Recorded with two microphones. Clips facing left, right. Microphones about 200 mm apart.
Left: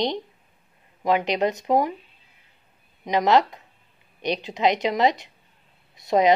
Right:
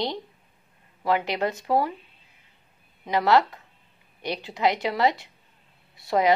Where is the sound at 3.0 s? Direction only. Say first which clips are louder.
Left 1 dB; 20° left (ahead or behind).